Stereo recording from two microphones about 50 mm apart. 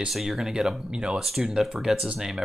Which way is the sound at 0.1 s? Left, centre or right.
Centre.